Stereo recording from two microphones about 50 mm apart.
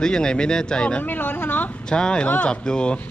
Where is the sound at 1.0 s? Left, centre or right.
Left.